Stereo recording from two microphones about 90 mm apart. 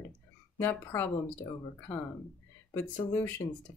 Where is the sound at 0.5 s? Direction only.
20° left (ahead or behind).